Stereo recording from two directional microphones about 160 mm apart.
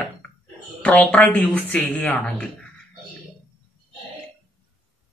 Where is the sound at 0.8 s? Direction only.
10° left (ahead or behind).